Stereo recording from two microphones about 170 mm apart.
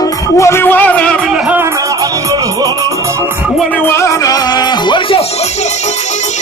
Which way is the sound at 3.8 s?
15° left (ahead or behind).